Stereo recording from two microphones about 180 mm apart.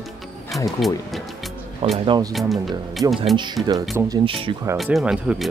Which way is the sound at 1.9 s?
25° right (ahead or behind).